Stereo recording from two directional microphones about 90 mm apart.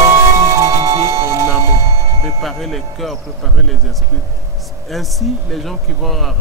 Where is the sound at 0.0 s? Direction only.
35° right (ahead or behind).